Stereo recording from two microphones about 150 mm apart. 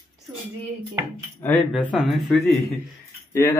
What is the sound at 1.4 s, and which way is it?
Speech, 10° left (ahead or behind).